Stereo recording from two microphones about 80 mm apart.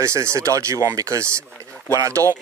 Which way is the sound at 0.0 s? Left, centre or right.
Right.